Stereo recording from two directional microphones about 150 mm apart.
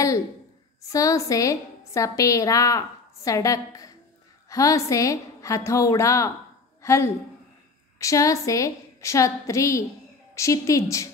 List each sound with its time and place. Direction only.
0.9 s a woman's voice: 20° left (ahead or behind)
6.8 s a sound: 20° left (ahead or behind)
8.0 s a woman's voice: 20° left (ahead or behind)